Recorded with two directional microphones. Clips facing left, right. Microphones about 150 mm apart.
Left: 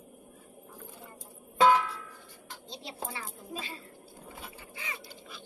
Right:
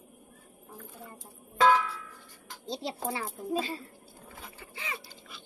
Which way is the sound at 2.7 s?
35° right (ahead or behind).